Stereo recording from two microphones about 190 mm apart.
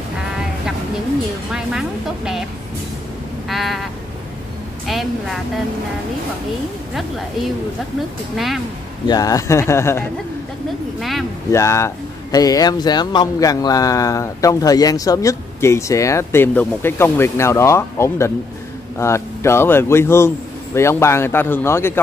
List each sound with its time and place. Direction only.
1.5 s a woman's voice: centre (ahead or behind)
3.4 s a sound: centre (ahead or behind)
4.8 s a sound: centre (ahead or behind)
6.9 s a woman's voice: centre (ahead or behind)
9.0 s speech: 20° left (ahead or behind)
11.0 s a woman's voice: centre (ahead or behind)
11.5 s speech: 15° left (ahead or behind)